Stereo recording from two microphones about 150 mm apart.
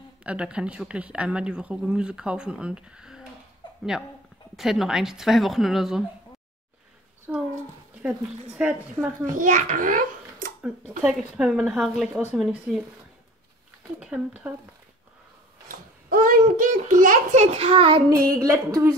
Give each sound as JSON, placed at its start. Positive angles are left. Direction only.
{"t": 0.2, "sound": "speech", "side_deg": -10}
{"t": 3.6, "sound": "a sound", "side_deg": 35}
{"t": 4.6, "sound": "a woman's voice", "side_deg": 0}
{"t": 7.3, "sound": "speech", "side_deg": -10}
{"t": 9.2, "sound": "a child's voice", "side_deg": -60}
{"t": 11.0, "sound": "a woman's voice", "side_deg": -5}
{"t": 13.9, "sound": "speech", "side_deg": -5}
{"t": 15.7, "sound": "a child's voice", "side_deg": -70}
{"t": 18.4, "sound": "speech", "side_deg": -20}